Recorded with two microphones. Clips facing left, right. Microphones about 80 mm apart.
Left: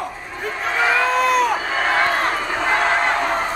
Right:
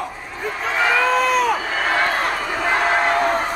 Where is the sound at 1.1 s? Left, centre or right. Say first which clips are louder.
Even; centre.